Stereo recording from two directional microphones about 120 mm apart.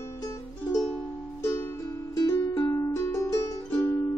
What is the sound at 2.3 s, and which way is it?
Music, 25° left (ahead or behind).